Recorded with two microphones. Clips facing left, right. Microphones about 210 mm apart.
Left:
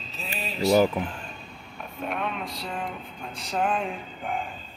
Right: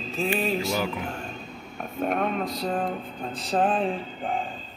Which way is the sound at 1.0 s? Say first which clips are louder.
Right 1 dB; 45° right (ahead or behind).